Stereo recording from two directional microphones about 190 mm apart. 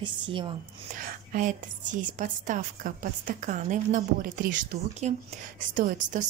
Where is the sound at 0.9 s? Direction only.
45° right (ahead or behind).